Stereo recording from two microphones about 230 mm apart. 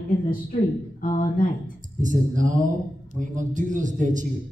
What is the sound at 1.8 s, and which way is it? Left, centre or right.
A man's voice, right.